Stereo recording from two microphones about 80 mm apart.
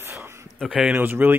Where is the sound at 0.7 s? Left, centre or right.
Centre.